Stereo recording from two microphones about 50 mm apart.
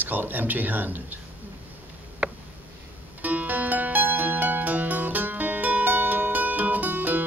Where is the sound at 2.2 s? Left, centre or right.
Right.